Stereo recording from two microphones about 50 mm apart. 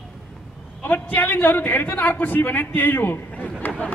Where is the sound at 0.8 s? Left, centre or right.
Left.